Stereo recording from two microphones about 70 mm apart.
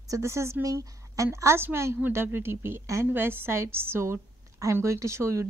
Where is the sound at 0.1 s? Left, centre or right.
Right.